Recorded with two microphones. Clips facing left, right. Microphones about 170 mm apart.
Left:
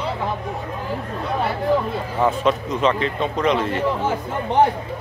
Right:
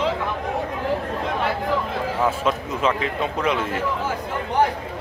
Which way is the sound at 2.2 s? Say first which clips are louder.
Left 4 dB; 5° right (ahead or behind).